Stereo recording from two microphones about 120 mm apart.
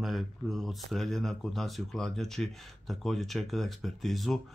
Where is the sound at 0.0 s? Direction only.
Centre (ahead or behind).